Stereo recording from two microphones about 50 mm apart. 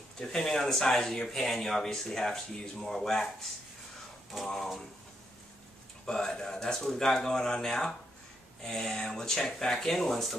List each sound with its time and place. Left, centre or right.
0.2 s speech: centre
6.0 s speech: centre